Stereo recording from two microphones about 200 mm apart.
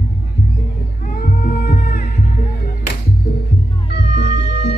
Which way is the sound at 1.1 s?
40° left (ahead or behind).